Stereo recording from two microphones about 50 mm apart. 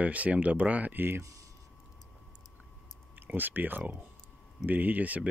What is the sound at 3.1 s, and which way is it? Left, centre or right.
Speech, right.